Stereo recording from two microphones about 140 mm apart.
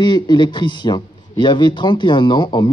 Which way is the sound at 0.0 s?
30° left (ahead or behind).